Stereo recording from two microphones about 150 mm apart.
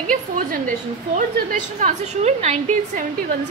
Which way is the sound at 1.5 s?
55° right (ahead or behind).